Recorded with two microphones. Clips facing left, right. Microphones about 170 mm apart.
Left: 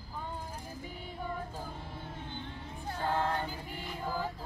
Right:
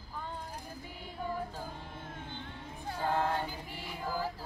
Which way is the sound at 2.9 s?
10° right (ahead or behind).